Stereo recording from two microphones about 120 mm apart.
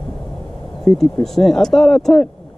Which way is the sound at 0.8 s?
5° left (ahead or behind).